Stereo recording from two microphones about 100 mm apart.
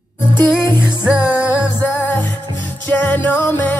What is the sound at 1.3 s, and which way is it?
Music, 20° left (ahead or behind).